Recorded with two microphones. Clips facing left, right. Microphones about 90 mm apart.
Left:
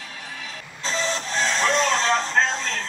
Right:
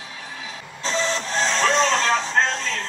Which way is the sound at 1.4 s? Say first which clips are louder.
Right 2 dB; 5° left (ahead or behind).